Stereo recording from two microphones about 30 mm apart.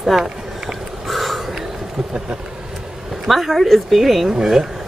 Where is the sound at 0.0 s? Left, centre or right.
Centre.